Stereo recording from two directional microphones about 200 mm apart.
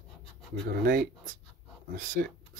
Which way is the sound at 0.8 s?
45° right (ahead or behind).